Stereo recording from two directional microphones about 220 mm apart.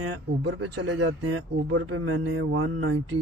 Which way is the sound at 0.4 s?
50° right (ahead or behind).